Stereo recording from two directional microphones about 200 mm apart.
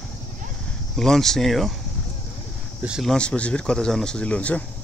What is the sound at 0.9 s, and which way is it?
Speech, centre (ahead or behind).